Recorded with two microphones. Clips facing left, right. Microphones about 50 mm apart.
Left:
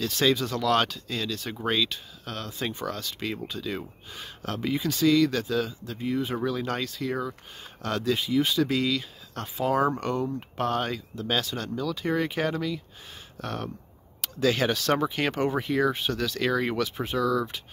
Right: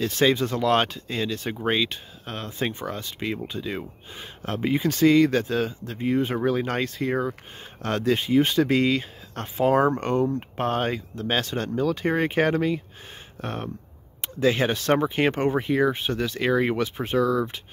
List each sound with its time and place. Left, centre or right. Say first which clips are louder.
0.0 s speech: right 3 dB; right
4.8 s speech: right 4 dB; right